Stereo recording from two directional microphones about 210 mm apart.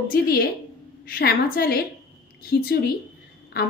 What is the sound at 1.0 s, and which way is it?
A woman's voice, 45° left (ahead or behind).